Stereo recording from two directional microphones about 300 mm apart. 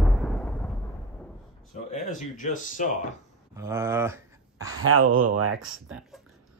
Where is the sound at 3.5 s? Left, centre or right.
Centre.